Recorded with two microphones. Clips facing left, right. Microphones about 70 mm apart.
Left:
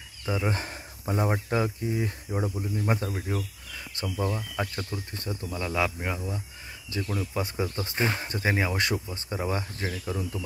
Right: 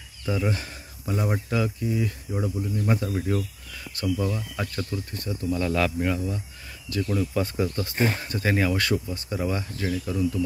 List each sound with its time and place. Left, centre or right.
0.2 s speech: left
0.5 s a sound: left
1.5 s speech: left
2.3 s speech: centre
3.2 s speech: centre
3.9 s speech: left
5.6 s speech: centre
7.1 s speech: centre; by 10.4 s left